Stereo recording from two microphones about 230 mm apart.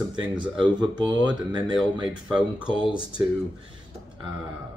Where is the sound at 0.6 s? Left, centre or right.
Centre.